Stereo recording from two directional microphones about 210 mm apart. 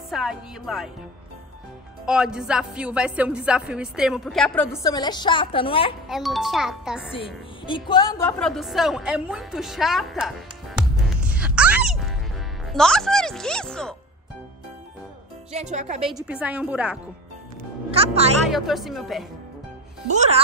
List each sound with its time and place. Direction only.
0.1 s a woman's voice: centre (ahead or behind)
2.0 s speech: 5° right (ahead or behind)
4.8 s a woman's voice: 20° left (ahead or behind)
6.0 s speech: centre (ahead or behind)
7.2 s a woman's voice: 25° left (ahead or behind)
8.4 s a woman's voice: centre (ahead or behind)
15.5 s speech: 35° right (ahead or behind)
16.3 s a woman's voice: 5° right (ahead or behind)
17.9 s speech: 30° right (ahead or behind)
18.5 s speech: centre (ahead or behind)
20.1 s speech: 35° right (ahead or behind)